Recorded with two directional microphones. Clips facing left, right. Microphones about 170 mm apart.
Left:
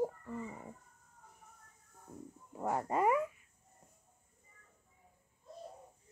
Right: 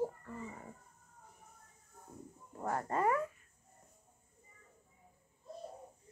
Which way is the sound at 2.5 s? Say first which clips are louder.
Left 2 dB; 10° left (ahead or behind).